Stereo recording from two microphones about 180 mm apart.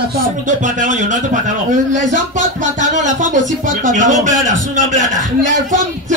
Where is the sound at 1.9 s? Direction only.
45° right (ahead or behind).